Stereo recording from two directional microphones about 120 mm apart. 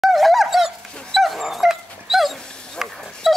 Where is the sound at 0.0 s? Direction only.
Centre (ahead or behind).